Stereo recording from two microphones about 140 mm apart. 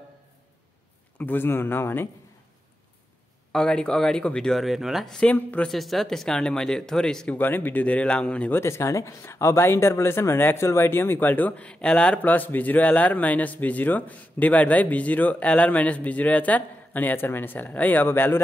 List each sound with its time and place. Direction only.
1.1 s speech: 15° left (ahead or behind)
3.5 s speech: 5° left (ahead or behind)